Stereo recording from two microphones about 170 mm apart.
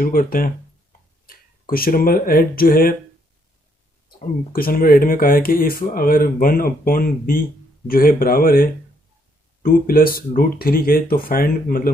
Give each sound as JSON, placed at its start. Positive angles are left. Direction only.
{"t": 0.0, "sound": "speech", "side_deg": 55}
{"t": 4.5, "sound": "speech", "side_deg": 60}